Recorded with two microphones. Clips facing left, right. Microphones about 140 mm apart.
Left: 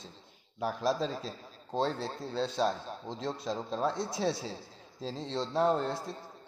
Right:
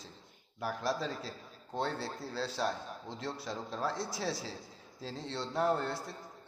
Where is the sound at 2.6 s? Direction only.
25° left (ahead or behind).